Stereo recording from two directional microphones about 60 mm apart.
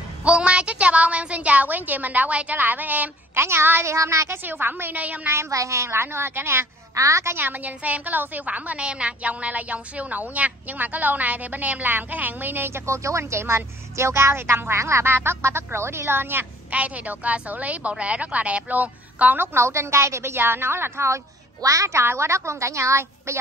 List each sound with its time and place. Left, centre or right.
0.2 s a woman's voice: centre
3.3 s a woman's voice: right
3.9 s a woman's voice: right
4.4 s a woman's voice: right
5.5 s a woman's voice: right
7.0 s a woman's voice: right
7.3 s a woman's voice: right
16.7 s a woman's voice: right
19.4 s a woman's voice: right
21.5 s a woman's voice: right
22.0 s a woman's voice: right